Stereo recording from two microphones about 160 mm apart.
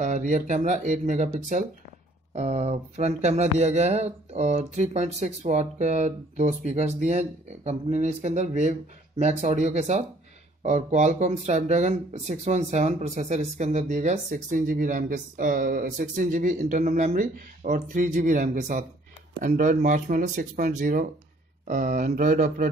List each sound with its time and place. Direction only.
0.0 s speech: 50° right (ahead or behind)
17.1 s speech: 60° right (ahead or behind)